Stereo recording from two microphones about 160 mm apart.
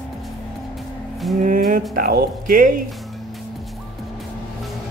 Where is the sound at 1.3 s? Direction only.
60° right (ahead or behind).